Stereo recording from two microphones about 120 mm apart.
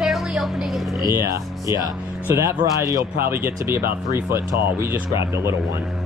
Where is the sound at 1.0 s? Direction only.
25° right (ahead or behind).